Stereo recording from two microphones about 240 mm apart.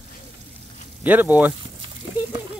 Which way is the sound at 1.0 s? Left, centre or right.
Centre.